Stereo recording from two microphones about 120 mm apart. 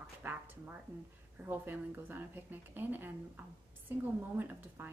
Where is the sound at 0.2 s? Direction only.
15° right (ahead or behind).